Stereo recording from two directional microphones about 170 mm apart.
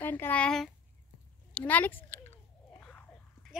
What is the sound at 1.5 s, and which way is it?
Chewing, 10° left (ahead or behind).